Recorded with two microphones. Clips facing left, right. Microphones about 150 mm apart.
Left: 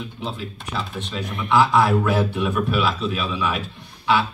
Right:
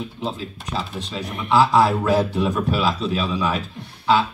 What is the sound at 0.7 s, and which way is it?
Speech, 35° right (ahead or behind).